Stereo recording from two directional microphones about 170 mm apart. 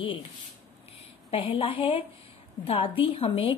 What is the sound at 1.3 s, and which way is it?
A woman's voice, 30° left (ahead or behind).